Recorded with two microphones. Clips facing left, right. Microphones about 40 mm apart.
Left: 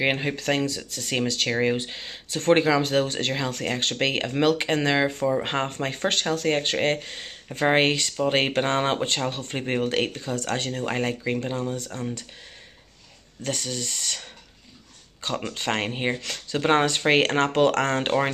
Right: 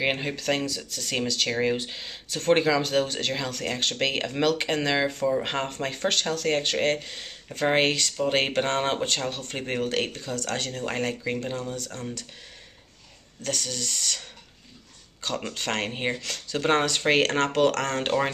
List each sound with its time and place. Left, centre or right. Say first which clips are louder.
0.0 s speech: left 2 dB; centre
13.4 s speech: left 1 dB; left
15.5 s speech: left 2 dB; centre